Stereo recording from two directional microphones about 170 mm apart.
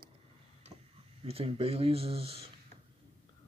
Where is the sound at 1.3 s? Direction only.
35° right (ahead or behind).